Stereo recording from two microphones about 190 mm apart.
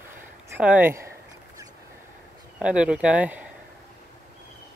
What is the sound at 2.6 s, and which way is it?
Speech, 5° right (ahead or behind).